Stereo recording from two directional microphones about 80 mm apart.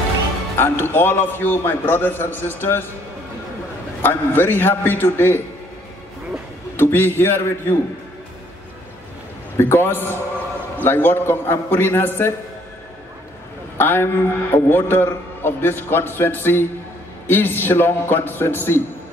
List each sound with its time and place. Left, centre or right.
0.6 s a man's voice: left
4.0 s a man's voice: left
6.8 s a man's voice: left
9.6 s a man's voice: left
13.7 s a man's voice: left